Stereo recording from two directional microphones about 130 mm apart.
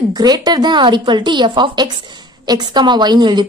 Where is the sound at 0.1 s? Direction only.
30° right (ahead or behind).